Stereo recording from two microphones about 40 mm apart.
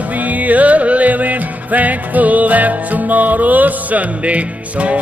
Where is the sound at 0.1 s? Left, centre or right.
Right.